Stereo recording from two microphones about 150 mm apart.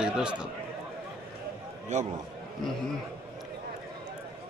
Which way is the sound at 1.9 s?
50° right (ahead or behind).